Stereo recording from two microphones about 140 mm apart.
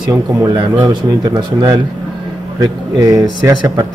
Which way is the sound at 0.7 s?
35° right (ahead or behind).